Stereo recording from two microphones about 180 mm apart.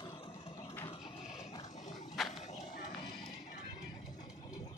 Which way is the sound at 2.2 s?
Centre (ahead or behind).